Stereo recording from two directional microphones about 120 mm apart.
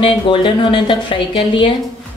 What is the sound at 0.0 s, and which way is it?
Speech, 45° left (ahead or behind).